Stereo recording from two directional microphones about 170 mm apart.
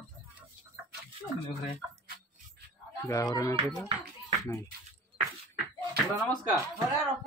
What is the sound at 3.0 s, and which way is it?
Speech, 20° left (ahead or behind).